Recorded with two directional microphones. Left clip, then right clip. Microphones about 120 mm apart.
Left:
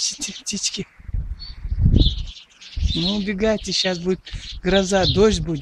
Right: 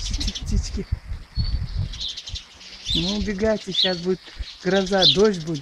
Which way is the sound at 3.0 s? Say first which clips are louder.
Left 3 dB; 30° left (ahead or behind).